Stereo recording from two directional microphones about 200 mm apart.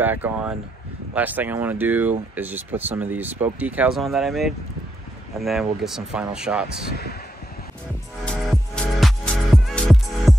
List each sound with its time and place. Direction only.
0.0 s speech: 10° right (ahead or behind)
6.9 s speech: 50° left (ahead or behind)
8.5 s music: centre (ahead or behind)